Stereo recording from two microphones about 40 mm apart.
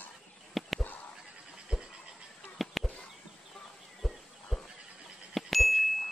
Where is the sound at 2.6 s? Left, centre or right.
Centre.